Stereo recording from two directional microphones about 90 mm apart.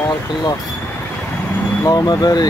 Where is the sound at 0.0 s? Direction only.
45° left (ahead or behind).